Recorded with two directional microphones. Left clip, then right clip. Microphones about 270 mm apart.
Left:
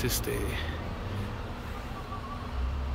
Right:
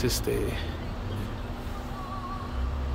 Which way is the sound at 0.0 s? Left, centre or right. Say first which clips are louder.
Right 4 dB; centre.